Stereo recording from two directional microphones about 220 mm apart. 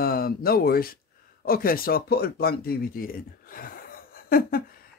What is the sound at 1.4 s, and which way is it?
Speech, 40° left (ahead or behind).